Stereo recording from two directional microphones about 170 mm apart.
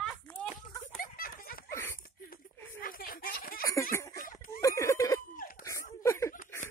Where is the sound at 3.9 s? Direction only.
15° left (ahead or behind).